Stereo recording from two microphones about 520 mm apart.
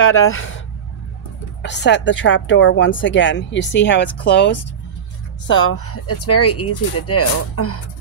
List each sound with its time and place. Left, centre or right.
0.0 s a woman's voice: left
1.6 s a woman's voice: centre